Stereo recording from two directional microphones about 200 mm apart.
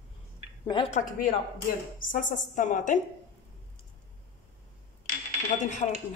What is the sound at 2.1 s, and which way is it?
Speech, 40° left (ahead or behind).